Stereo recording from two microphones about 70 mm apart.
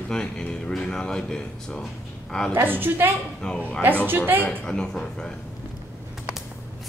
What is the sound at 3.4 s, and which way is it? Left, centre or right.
Speech, centre.